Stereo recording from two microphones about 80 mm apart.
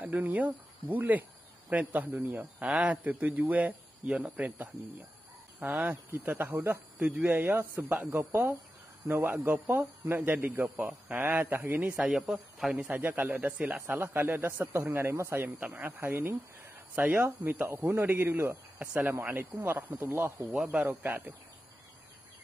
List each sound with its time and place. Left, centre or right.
0.0 s speech: right
12.1 s a man's voice: centre
12.8 s speech: right